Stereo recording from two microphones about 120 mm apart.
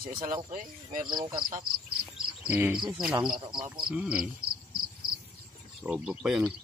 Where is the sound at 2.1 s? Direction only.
15° right (ahead or behind).